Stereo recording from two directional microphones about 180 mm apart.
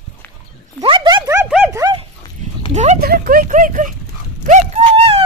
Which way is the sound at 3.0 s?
55° right (ahead or behind).